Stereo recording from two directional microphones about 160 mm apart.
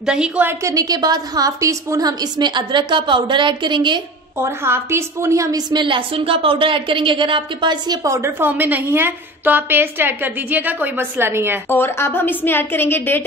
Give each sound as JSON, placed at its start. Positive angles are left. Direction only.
{"t": 0.0, "sound": "a woman's voice", "side_deg": -5}
{"t": 4.4, "sound": "a woman's voice", "side_deg": -15}
{"t": 11.7, "sound": "a woman's voice", "side_deg": 15}